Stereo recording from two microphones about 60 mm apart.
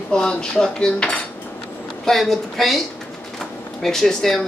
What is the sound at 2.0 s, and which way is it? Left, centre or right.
Speech, centre.